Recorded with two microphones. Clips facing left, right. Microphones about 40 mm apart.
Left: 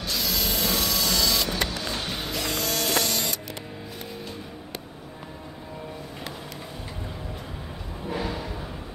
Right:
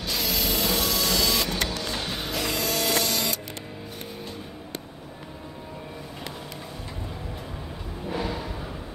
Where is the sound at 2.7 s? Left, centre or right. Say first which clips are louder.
Right 2 dB; right.